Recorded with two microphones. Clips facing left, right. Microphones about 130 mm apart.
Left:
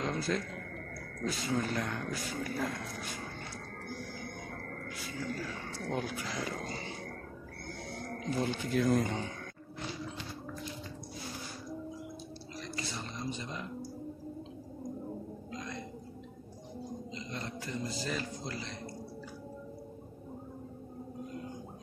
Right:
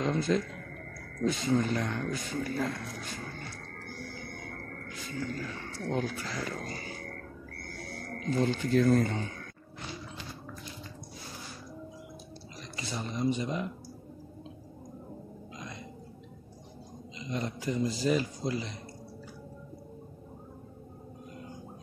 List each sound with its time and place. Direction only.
0.0 s a man's voice: centre (ahead or behind)
3.8 s music: 15° left (ahead or behind)
4.8 s speech: 10° left (ahead or behind)
7.6 s music: 20° left (ahead or behind)
8.4 s speech: 10° left (ahead or behind)
12.7 s a man's voice: 15° right (ahead or behind)
15.5 s a sound: 15° right (ahead or behind)
17.2 s a man's voice: 15° right (ahead or behind)